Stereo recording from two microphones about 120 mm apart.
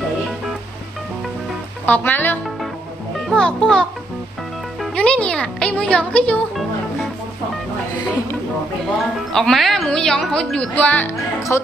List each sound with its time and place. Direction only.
1.9 s a woman's voice: 15° left (ahead or behind)
4.9 s a woman's voice: 10° left (ahead or behind)
9.3 s a woman's voice: 5° left (ahead or behind); by 11.7 s 20° left (ahead or behind)